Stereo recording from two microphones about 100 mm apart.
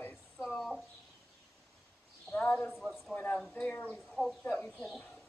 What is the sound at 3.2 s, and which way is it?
Speech, 15° left (ahead or behind).